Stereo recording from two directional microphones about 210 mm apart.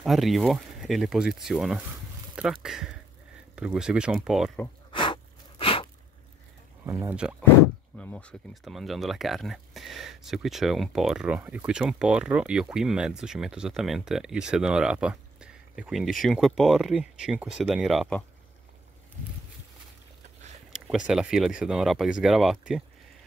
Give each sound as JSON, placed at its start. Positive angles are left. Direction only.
{"t": 0.0, "sound": "speech", "side_deg": 0}
{"t": 4.9, "sound": "a sound", "side_deg": 25}
{"t": 6.9, "sound": "speech", "side_deg": -10}
{"t": 8.0, "sound": "speech", "side_deg": 5}
{"t": 20.7, "sound": "speech", "side_deg": 0}